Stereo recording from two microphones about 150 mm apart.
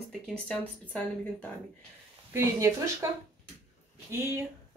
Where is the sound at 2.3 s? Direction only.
20° right (ahead or behind).